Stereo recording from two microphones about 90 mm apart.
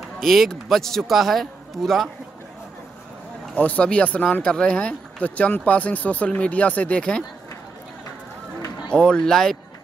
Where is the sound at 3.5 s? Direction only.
15° left (ahead or behind).